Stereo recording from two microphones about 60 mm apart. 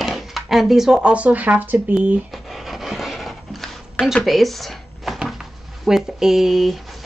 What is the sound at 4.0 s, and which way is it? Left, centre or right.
Speech, centre.